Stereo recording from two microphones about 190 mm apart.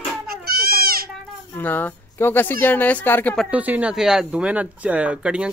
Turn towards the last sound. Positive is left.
turn(degrees=-5)  # may be behind; listen again after turning